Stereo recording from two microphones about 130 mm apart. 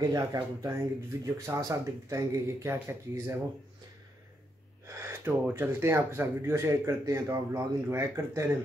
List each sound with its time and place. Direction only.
0.0 s speech: 30° right (ahead or behind)
4.8 s speech: 20° right (ahead or behind)